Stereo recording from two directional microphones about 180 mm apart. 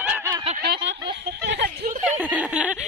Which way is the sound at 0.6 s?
65° right (ahead or behind).